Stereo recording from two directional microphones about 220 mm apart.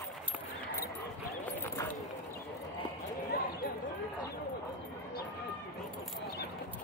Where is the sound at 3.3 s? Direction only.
45° left (ahead or behind).